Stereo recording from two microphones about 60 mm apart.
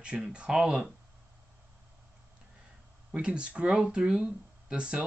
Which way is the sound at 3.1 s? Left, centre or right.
Centre.